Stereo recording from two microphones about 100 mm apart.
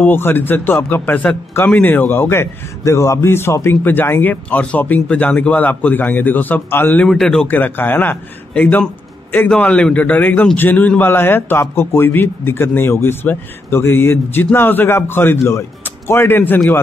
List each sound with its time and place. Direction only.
0.0 s a man's voice: 20° left (ahead or behind)
7.1 s speech: 5° left (ahead or behind)
7.4 s a man's voice: 20° left (ahead or behind)